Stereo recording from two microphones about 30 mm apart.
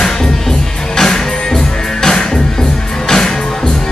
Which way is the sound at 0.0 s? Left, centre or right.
Centre.